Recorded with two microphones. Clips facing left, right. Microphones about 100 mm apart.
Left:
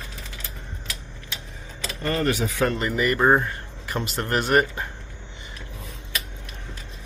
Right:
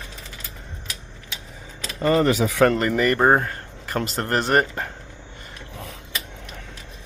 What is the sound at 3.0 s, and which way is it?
Speech, 45° right (ahead or behind).